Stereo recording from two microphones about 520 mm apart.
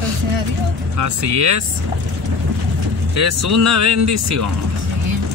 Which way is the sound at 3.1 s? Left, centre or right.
Right.